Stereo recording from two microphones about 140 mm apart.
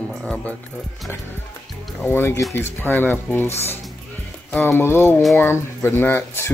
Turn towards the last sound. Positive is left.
turn(degrees=15)  # may be behind; listen again after turning